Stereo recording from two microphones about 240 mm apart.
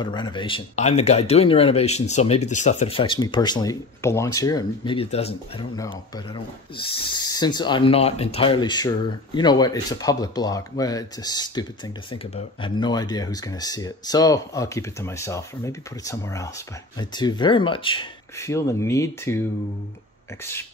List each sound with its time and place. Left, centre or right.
0.0 s speech: centre